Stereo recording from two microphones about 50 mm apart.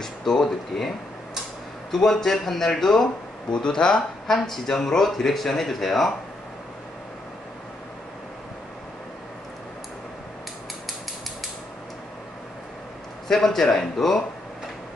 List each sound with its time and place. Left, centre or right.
0.0 s speech: centre
3.5 s speech: centre
4.3 s speech: centre
13.3 s speech: centre